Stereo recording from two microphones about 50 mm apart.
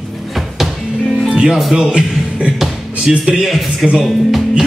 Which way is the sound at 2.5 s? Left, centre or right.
Centre.